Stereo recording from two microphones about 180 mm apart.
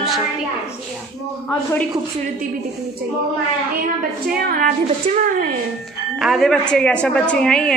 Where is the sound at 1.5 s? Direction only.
10° left (ahead or behind).